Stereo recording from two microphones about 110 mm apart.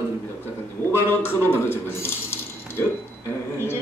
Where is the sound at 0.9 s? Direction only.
20° left (ahead or behind).